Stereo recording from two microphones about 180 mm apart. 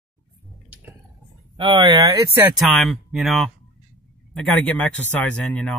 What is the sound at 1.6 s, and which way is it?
Speech, 25° right (ahead or behind).